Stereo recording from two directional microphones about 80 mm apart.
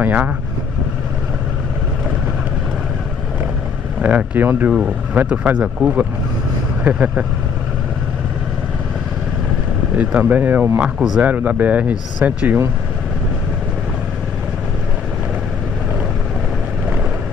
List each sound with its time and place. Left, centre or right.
0.0 s speech: centre
4.0 s speech: centre
9.9 s speech: centre